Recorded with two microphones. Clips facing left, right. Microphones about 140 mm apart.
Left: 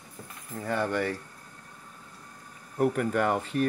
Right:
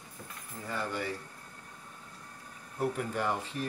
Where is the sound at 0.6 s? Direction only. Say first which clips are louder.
Left 7 dB; 65° left (ahead or behind).